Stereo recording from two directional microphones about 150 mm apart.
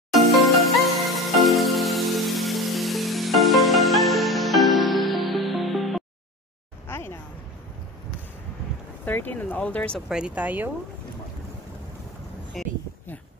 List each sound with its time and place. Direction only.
0.1 s music: centre (ahead or behind)
6.9 s a sound: 15° left (ahead or behind)
9.0 s speech: 10° left (ahead or behind)
10.0 s speech: 5° right (ahead or behind)
12.6 s speech: centre (ahead or behind)